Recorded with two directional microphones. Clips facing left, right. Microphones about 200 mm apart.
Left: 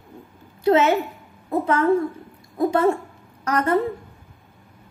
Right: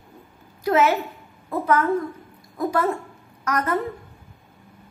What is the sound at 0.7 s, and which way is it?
A woman's voice, 25° left (ahead or behind).